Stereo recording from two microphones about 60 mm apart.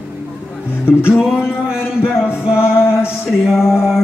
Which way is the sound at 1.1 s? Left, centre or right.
Centre.